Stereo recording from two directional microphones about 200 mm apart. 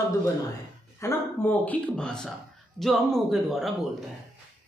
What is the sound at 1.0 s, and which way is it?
A man's voice, 10° left (ahead or behind).